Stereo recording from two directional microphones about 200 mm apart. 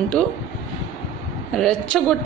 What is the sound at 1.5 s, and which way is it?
Speech, 5° left (ahead or behind).